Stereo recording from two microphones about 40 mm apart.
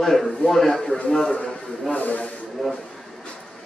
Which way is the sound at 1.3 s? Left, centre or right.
Left.